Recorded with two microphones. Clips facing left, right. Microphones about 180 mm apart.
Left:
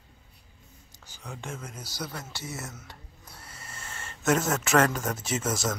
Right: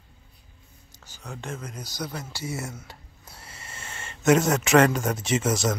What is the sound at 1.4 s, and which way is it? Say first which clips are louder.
Speech: right 4 dB; 5° left (ahead or behind).